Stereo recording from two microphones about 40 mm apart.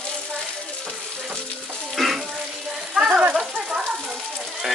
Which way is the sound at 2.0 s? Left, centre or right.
Centre.